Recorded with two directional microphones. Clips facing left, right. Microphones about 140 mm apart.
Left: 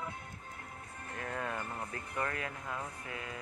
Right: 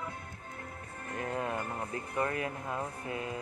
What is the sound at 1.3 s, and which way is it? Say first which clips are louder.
Speech: right 3 dB; 20° right (ahead or behind).